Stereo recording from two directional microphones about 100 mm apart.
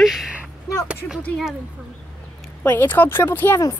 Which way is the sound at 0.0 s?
5° right (ahead or behind).